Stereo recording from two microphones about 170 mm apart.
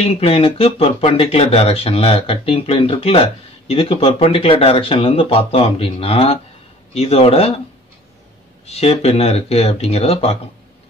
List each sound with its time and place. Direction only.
0.0 s speech: 35° left (ahead or behind)
8.6 s speech: 35° left (ahead or behind)